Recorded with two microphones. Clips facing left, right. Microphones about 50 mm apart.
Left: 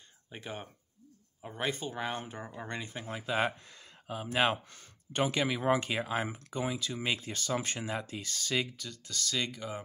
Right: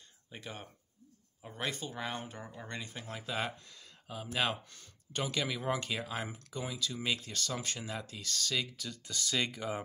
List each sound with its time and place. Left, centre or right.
0.3 s speech: centre
3.3 s speech: left
8.7 s speech: centre